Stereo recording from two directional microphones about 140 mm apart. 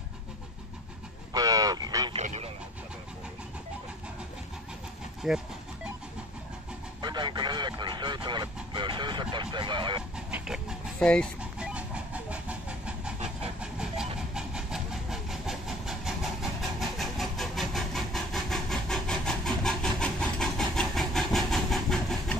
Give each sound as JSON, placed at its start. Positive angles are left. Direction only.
{"t": 1.3, "sound": "a sound", "side_deg": -25}
{"t": 2.1, "sound": "frog", "side_deg": -50}
{"t": 5.2, "sound": "speech", "side_deg": 0}
{"t": 7.0, "sound": "a sound", "side_deg": -30}
{"t": 8.7, "sound": "vehicle", "side_deg": -30}
{"t": 10.1, "sound": "chicken", "side_deg": -5}
{"t": 11.0, "sound": "speech", "side_deg": 10}
{"t": 11.5, "sound": "train", "side_deg": -5}